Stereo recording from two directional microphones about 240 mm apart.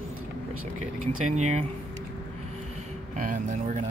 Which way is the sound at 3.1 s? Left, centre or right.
Right.